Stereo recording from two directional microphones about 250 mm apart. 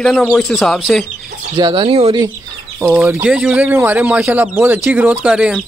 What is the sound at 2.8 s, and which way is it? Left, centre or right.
Speech, centre.